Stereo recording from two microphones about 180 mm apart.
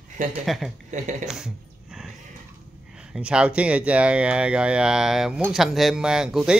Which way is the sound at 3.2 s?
5° right (ahead or behind).